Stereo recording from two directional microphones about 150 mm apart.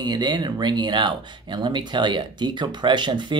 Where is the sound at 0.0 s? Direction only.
30° right (ahead or behind).